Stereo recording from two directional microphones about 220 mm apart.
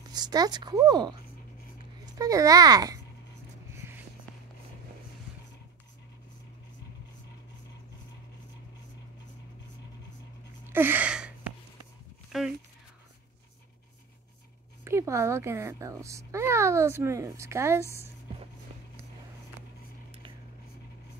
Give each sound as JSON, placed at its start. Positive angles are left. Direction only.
{"t": 0.1, "sound": "a woman's voice", "side_deg": -20}
{"t": 2.1, "sound": "speech", "side_deg": -15}
{"t": 3.7, "sound": "a sound", "side_deg": -10}
{"t": 10.7, "sound": "a sound", "side_deg": -10}
{"t": 12.3, "sound": "speech", "side_deg": 0}
{"t": 14.9, "sound": "speech", "side_deg": -15}